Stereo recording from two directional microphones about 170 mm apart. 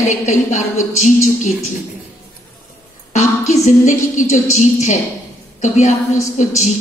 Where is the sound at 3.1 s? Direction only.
45° left (ahead or behind).